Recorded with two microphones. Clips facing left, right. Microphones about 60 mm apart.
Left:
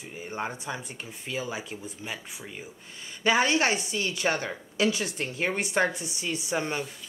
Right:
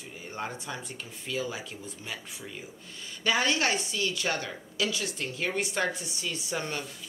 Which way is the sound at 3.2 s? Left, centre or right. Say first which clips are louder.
Left 3 dB; centre.